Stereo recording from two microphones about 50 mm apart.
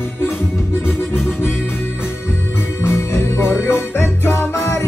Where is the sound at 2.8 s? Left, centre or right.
Left.